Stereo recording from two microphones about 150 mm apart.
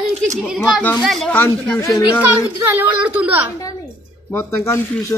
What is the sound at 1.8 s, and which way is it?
Speech, 20° left (ahead or behind).